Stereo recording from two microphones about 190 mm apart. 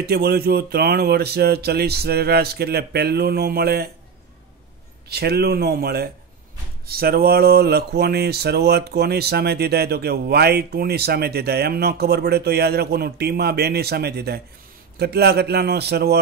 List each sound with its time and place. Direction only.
0.0 s speech: 55° right (ahead or behind)
5.1 s speech: 60° right (ahead or behind)